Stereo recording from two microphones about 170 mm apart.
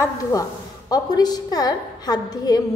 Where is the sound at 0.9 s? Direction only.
25° left (ahead or behind).